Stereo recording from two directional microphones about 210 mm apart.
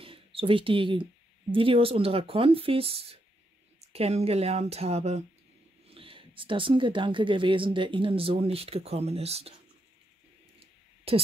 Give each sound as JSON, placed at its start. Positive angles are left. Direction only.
{"t": 0.0, "sound": "a sound", "side_deg": -25}
{"t": 1.5, "sound": "speech", "side_deg": -25}
{"t": 11.1, "sound": "speech", "side_deg": -25}